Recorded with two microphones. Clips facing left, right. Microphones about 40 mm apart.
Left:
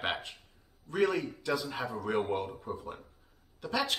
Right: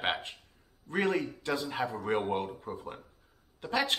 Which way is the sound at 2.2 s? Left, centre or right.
Right.